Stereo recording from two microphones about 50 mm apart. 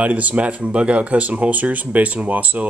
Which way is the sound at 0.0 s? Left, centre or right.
Right.